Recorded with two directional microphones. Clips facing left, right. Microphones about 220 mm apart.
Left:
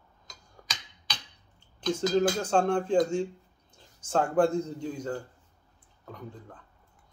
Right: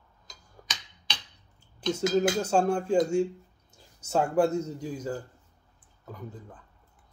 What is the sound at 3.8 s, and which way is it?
Speech, 10° right (ahead or behind).